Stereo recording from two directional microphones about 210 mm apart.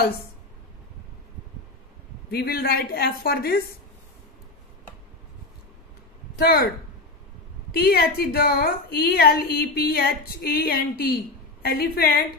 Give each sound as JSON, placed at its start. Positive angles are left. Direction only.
{"t": 2.3, "sound": "a woman's voice", "side_deg": 45}
{"t": 6.3, "sound": "a woman's voice", "side_deg": 45}
{"t": 7.7, "sound": "a woman's voice", "side_deg": 50}